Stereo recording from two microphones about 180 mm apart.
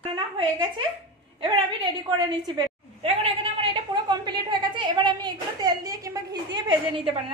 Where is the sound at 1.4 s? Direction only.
25° right (ahead or behind).